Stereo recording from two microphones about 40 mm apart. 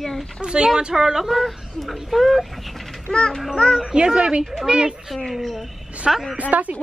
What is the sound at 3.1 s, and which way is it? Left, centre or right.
Speech, left.